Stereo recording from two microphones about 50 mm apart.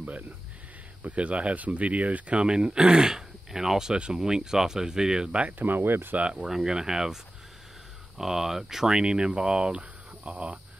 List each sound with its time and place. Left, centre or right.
1.0 s speech: right
5.6 s speech: right
6.1 s speech: centre
6.4 s speech: centre
8.2 s speech: centre; by 10.6 s right